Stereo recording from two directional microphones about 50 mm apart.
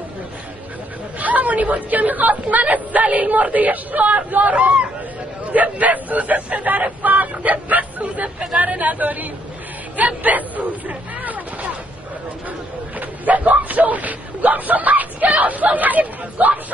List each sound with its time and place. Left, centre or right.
1.2 s a woman's voice: right
13.0 s speech: right